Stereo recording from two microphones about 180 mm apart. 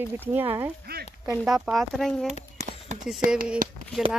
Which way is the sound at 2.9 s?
40° right (ahead or behind).